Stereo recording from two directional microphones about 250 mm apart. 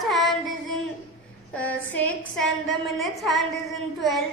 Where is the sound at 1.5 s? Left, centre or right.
Centre.